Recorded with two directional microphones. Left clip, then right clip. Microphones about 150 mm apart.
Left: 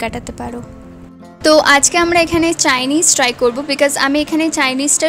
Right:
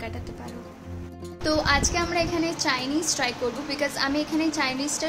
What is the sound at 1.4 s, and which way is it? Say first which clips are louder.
Speech: left 13 dB; 75° left (ahead or behind).